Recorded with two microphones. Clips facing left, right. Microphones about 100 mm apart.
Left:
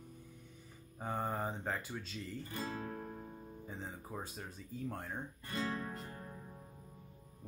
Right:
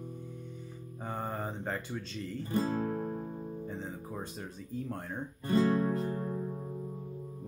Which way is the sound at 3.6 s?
Centre (ahead or behind).